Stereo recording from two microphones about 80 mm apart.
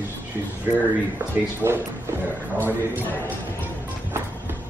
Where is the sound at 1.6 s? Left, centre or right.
Right.